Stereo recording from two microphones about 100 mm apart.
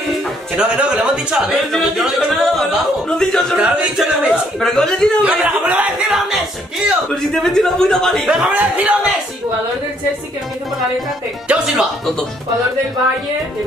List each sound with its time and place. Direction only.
0.6 s speech: 10° right (ahead or behind); by 3.5 s 5° left (ahead or behind)
3.5 s speech: 10° right (ahead or behind)
5.2 s speech: 10° right (ahead or behind); by 8.3 s 5° left (ahead or behind)
8.3 s a man's voice: 15° right (ahead or behind)
11.4 s a man's voice: 5° right (ahead or behind)